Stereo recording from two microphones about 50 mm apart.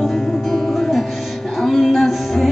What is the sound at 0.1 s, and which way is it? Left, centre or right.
Music, centre.